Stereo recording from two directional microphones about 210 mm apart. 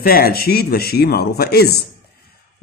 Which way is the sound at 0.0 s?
45° left (ahead or behind).